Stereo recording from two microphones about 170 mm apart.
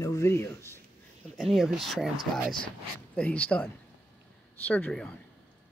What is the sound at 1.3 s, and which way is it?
Speech, centre (ahead or behind).